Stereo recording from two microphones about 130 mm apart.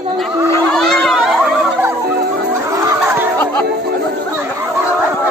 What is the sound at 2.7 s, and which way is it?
Music, 25° right (ahead or behind).